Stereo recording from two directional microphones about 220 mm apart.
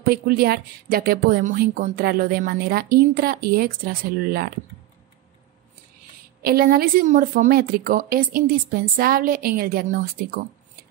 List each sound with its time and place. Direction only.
0.0 s speech: 45° right (ahead or behind)
6.4 s a woman's voice: 45° right (ahead or behind)